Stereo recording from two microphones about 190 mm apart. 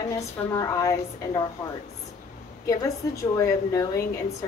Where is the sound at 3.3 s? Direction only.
15° left (ahead or behind).